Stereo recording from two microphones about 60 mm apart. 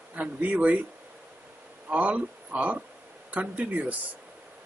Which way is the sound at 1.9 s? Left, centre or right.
Right.